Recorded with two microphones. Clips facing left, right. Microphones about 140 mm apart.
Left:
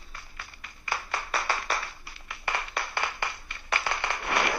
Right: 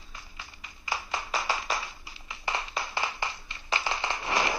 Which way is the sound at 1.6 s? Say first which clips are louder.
Left 1 dB; 20° right (ahead or behind).